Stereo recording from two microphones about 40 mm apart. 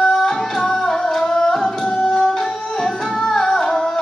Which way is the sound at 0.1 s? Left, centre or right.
Centre.